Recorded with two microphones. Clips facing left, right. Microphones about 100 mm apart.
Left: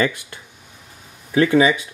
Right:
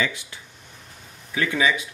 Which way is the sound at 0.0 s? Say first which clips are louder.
Left 6 dB; 50° left (ahead or behind).